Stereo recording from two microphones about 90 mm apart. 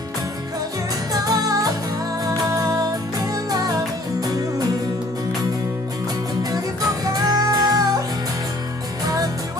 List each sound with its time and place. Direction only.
1.1 s music: 45° right (ahead or behind)
6.5 s music: 45° right (ahead or behind)
9.0 s music: 40° right (ahead or behind)